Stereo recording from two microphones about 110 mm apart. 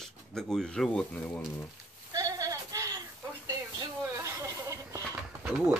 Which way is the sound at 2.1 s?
30° right (ahead or behind).